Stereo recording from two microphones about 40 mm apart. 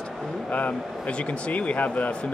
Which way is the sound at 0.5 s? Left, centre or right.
Left.